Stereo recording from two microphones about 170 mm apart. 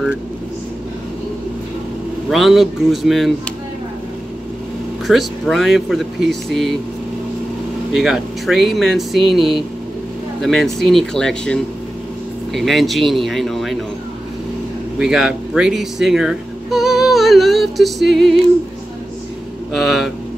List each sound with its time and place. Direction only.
2.2 s speech: centre (ahead or behind)
5.0 s speech: centre (ahead or behind)
7.9 s speech: centre (ahead or behind)
15.0 s speech: 5° right (ahead or behind)
19.7 s speech: centre (ahead or behind)